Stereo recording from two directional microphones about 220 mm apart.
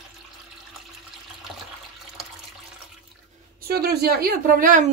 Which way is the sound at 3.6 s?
45° right (ahead or behind).